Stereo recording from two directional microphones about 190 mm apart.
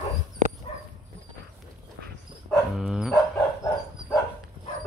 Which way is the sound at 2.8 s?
Centre (ahead or behind).